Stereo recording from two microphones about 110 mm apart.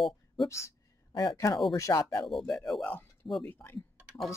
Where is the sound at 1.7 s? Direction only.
30° left (ahead or behind).